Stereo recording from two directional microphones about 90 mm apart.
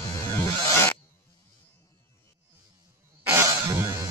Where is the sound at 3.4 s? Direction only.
35° right (ahead or behind).